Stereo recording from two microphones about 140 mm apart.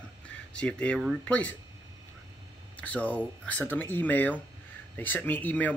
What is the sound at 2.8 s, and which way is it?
Speech, 10° left (ahead or behind).